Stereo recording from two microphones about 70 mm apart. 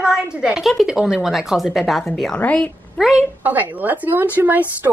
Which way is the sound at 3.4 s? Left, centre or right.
Right.